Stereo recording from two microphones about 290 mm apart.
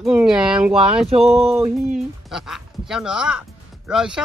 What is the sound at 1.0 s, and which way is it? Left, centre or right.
Speech, right.